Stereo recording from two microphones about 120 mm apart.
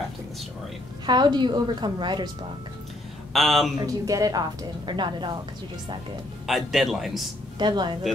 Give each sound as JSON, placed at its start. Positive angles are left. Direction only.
{"t": 1.0, "sound": "a woman's voice", "side_deg": -35}
{"t": 3.3, "sound": "speech", "side_deg": 0}
{"t": 3.7, "sound": "a woman's voice", "side_deg": -30}
{"t": 6.4, "sound": "speech", "side_deg": 0}
{"t": 7.5, "sound": "a woman's voice", "side_deg": -40}